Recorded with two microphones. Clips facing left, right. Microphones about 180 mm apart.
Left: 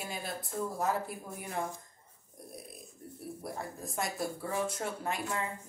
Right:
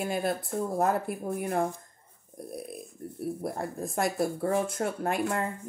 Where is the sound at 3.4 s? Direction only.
55° right (ahead or behind).